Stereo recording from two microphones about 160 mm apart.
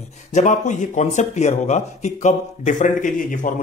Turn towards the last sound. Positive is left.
turn(degrees=55)  # may be behind; listen again after turning